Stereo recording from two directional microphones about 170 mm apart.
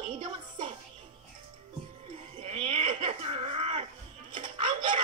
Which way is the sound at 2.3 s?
40° right (ahead or behind).